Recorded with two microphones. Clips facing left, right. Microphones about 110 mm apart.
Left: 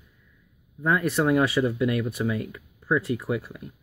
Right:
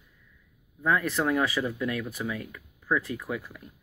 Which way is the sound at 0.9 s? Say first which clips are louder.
Left 3 dB; 25° left (ahead or behind).